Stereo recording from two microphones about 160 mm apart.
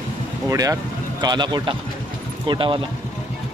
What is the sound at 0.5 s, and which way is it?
A man's voice, 20° right (ahead or behind).